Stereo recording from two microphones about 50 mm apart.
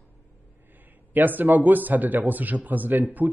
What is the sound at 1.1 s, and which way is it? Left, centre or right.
Speech, right.